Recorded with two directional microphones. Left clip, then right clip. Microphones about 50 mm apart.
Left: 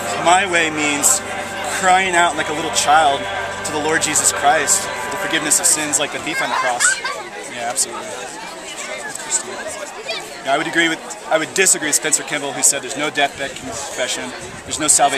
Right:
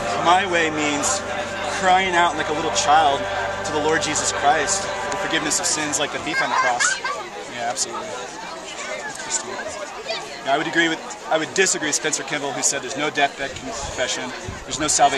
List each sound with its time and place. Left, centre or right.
0.2 s a man's voice: left
3.2 s music: left
3.7 s speech: left
5.3 s a man's voice: centre
10.4 s a man's voice: centre
14.8 s a man's voice: centre